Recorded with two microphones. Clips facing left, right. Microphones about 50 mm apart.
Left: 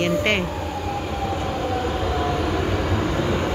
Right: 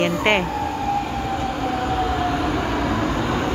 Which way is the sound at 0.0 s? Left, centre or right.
Right.